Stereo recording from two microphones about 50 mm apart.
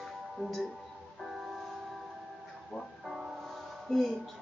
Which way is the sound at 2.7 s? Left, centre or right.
Centre.